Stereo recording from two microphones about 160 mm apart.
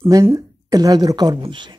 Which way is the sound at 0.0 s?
25° right (ahead or behind).